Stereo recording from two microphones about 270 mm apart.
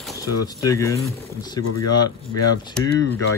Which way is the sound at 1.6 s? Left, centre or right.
Left.